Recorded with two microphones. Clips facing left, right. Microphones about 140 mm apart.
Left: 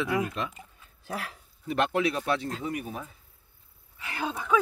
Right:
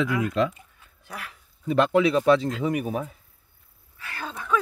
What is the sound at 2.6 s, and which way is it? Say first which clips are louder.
Speech: right 8 dB; 85° right.